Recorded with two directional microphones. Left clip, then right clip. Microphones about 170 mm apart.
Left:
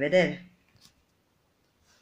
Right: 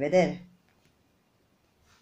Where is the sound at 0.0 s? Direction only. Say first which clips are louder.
Even; 15° left (ahead or behind).